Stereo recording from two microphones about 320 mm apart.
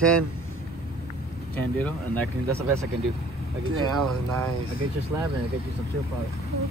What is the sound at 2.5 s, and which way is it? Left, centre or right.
Speech, centre.